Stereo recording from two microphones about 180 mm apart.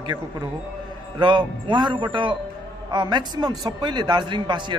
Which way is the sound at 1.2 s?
25° right (ahead or behind).